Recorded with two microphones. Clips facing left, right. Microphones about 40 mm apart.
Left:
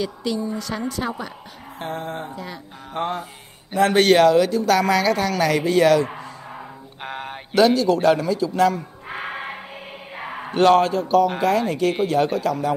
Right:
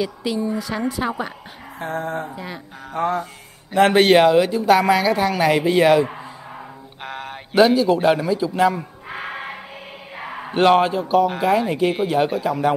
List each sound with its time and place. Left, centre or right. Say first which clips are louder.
0.0 s speech: right 2 dB; centre
1.8 s music: right 3 dB; right
2.3 s speech: right 1 dB; centre
3.9 s speech: even; centre
7.0 s mantra: even; centre
7.5 s speech: right 2 dB; centre
9.1 s music: even; centre
10.1 s a sound: even; centre
10.5 s speech: even; centre